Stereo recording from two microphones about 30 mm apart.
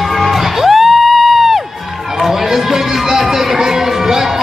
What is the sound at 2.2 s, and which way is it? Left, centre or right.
Music, centre.